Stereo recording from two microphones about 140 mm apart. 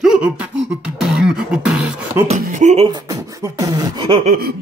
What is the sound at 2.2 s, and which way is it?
Speech, 60° right (ahead or behind).